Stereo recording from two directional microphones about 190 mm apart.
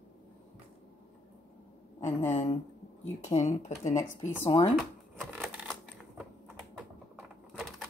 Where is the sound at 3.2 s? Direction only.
35° left (ahead or behind).